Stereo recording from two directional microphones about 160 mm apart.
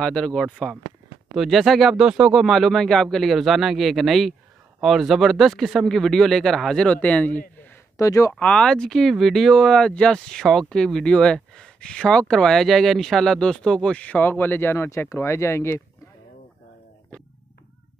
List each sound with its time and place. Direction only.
0.0 s speech: 5° left (ahead or behind)
7.6 s a sound: 15° left (ahead or behind)
8.4 s speech: 5° left (ahead or behind)
17.1 s speech: 5° left (ahead or behind)